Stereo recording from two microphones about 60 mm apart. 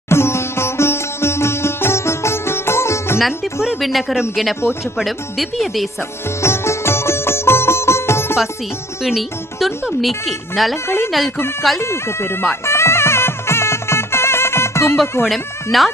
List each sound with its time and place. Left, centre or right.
0.1 s sitar: left
3.8 s speech: centre
6.4 s music: left
9.0 s speech: centre
11.8 s speech: left
12.6 s music: left
15.2 s speech: centre